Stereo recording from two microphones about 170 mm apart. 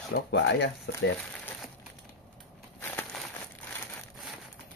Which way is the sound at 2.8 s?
5° left (ahead or behind).